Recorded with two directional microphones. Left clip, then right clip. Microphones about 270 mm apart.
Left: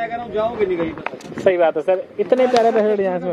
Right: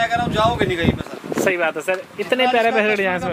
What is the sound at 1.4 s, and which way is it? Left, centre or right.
Speech, centre.